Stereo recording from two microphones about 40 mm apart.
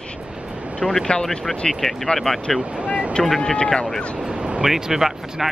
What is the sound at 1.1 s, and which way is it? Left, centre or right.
Speech, left.